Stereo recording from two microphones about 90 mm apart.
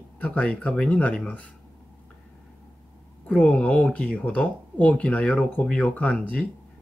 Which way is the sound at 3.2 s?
15° left (ahead or behind).